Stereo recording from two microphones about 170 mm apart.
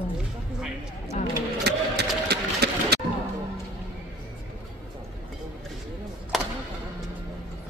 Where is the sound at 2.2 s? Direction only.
75° right (ahead or behind).